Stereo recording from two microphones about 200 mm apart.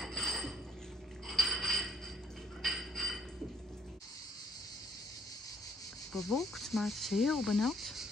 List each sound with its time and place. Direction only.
0.0 s dishes: centre (ahead or behind)
1.2 s bicycle bell: centre (ahead or behind)
2.6 s a sound: centre (ahead or behind)
6.1 s cricket: centre (ahead or behind)